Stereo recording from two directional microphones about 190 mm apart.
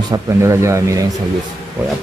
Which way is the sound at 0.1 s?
15° right (ahead or behind).